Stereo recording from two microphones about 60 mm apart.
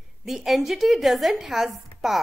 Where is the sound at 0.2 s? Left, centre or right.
Centre.